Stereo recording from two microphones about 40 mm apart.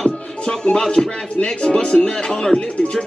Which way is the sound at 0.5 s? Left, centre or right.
Centre.